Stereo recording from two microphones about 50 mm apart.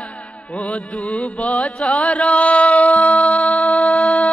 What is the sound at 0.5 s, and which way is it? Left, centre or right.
Music, left.